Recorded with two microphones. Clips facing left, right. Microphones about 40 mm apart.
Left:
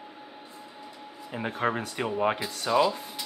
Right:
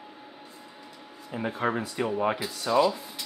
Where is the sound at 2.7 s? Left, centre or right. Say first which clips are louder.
Right 1 dB; left.